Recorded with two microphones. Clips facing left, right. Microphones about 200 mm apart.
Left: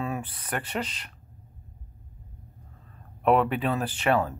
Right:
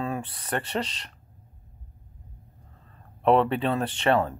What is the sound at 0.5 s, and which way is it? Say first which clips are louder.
Speech: right 2 dB; 30° right (ahead or behind).